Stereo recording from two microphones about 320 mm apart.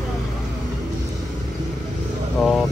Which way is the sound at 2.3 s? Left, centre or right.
Centre.